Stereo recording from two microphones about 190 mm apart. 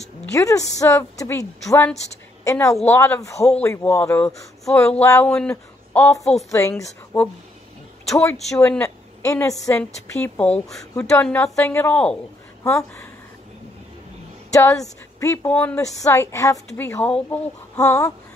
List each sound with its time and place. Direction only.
0.3 s a woman's voice: 15° left (ahead or behind)
8.5 s a woman's voice: 5° left (ahead or behind)
14.5 s a woman's voice: 15° left (ahead or behind)